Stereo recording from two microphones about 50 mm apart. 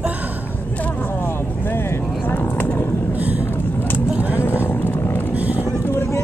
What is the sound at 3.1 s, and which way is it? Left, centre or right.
Vehicle, right.